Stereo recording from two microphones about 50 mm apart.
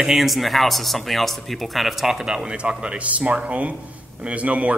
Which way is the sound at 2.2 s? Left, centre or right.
Centre.